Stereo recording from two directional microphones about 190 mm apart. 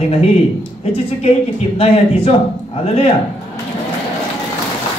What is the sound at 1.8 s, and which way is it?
A man's voice, 30° left (ahead or behind).